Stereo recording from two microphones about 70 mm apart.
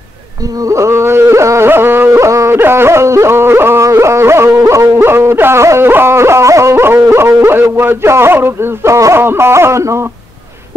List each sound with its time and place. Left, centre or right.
0.7 s music: right
4.6 s music: right
5.0 s music: right